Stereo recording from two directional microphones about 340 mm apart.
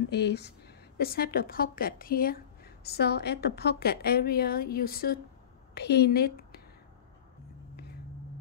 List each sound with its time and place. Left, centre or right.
0.1 s a woman's voice: left